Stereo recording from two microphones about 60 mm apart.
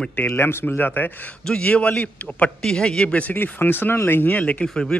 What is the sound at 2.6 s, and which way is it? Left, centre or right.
Speech, centre.